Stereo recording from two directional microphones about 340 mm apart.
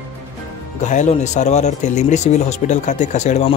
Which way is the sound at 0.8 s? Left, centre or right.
Left.